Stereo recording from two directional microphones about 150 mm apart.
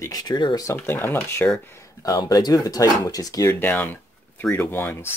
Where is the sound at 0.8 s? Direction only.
15° left (ahead or behind).